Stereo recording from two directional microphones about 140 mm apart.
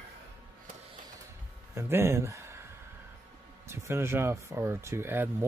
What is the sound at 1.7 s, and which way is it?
Speech, 20° right (ahead or behind).